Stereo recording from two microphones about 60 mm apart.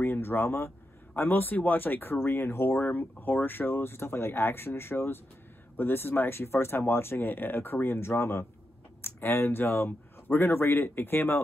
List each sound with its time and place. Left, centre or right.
0.0 s speech: left
2.9 s speech: left